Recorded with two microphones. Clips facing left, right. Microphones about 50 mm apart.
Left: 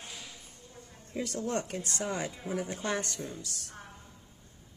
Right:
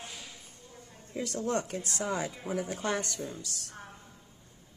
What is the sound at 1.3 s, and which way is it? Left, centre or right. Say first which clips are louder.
Speech: right 2 dB; right.